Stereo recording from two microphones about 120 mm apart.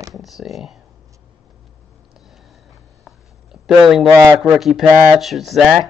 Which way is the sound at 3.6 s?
Centre (ahead or behind).